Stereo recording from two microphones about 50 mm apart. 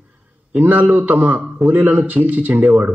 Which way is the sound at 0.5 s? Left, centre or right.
Right.